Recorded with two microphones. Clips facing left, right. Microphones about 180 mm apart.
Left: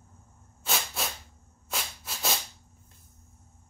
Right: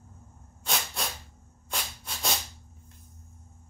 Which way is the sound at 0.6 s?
5° left (ahead or behind).